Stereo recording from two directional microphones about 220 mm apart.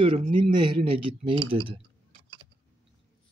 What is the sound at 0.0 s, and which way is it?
Speech, 25° right (ahead or behind).